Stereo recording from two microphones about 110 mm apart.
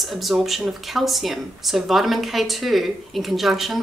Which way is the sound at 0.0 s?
Centre (ahead or behind).